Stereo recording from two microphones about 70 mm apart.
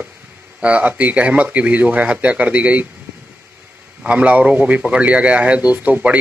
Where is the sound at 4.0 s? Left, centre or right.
Centre.